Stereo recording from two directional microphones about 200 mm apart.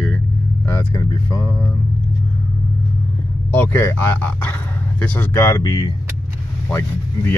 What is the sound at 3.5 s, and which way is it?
Speech, 10° left (ahead or behind).